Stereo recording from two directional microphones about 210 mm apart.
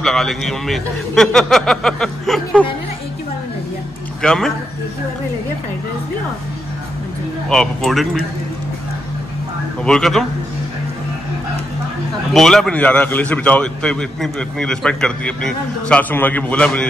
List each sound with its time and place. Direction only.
0.0 s a man's voice: centre (ahead or behind)
4.2 s a man's voice: 5° left (ahead or behind)
7.4 s a man's voice: centre (ahead or behind)
9.8 s a man's voice: 5° left (ahead or behind)
12.4 s a man's voice: centre (ahead or behind)